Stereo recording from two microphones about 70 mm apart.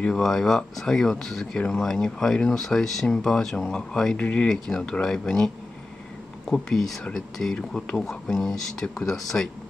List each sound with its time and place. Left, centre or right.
0.0 s speech: centre
4.2 s speech: centre
4.5 s speech: centre